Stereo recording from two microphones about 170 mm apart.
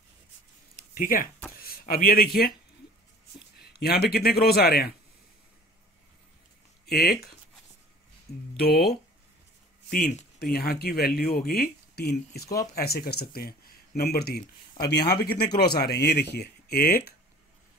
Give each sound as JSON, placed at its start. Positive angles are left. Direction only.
{"t": 0.9, "sound": "speech", "side_deg": 55}
{"t": 3.5, "sound": "a man's voice", "side_deg": 70}
{"t": 6.9, "sound": "speech", "side_deg": 65}
{"t": 8.5, "sound": "a man's voice", "side_deg": 70}